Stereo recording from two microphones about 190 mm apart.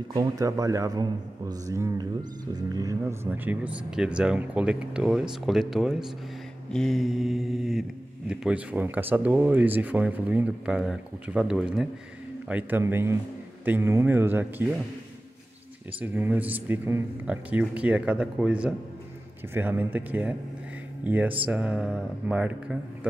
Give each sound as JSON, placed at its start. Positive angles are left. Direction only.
{"t": 0.1, "sound": "a man's voice", "side_deg": -20}
{"t": 16.0, "sound": "speech", "side_deg": -10}